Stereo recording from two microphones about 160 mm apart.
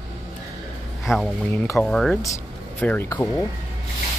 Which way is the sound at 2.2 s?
20° left (ahead or behind).